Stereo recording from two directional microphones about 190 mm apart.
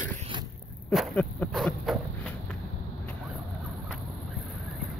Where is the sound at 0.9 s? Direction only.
5° left (ahead or behind).